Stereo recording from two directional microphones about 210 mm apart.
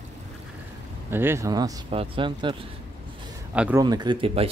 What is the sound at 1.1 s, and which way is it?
Speech, 10° right (ahead or behind).